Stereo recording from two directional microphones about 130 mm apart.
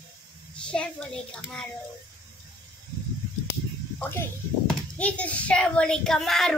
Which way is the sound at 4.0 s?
20° left (ahead or behind).